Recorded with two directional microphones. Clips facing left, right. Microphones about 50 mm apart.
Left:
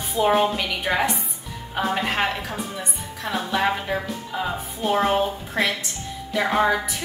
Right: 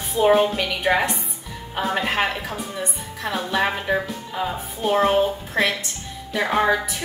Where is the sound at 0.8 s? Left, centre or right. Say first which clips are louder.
Right 3 dB; centre.